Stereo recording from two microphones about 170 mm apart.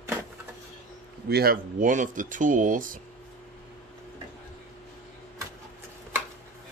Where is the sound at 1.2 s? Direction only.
65° right (ahead or behind); by 3.0 s 50° right (ahead or behind).